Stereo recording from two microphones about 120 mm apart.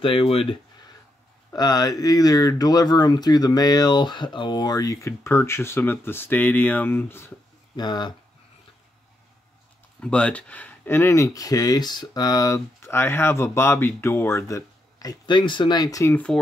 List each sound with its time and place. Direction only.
0.0 s speech: 50° left (ahead or behind)
1.5 s speech: 35° left (ahead or behind)
7.7 s speech: 35° left (ahead or behind)
9.9 s speech: 10° left (ahead or behind); by 16.1 s 30° left (ahead or behind)
16.1 s speech: 10° left (ahead or behind)